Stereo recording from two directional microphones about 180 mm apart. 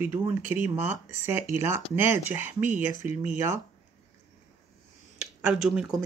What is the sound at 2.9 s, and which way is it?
Speech, 40° left (ahead or behind).